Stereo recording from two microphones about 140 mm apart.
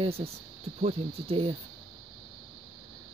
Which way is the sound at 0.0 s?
45° right (ahead or behind).